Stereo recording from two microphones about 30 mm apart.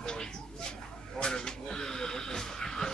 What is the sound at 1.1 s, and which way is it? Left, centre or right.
A man's voice, left.